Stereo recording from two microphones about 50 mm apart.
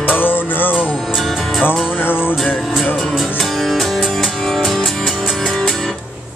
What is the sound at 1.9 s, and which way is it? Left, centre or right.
Speech, left.